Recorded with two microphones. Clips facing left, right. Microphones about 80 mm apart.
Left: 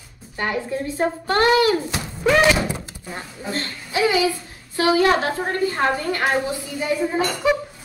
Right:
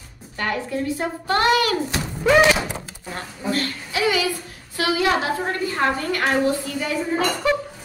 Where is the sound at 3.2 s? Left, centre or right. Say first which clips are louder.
Right 4 dB; left.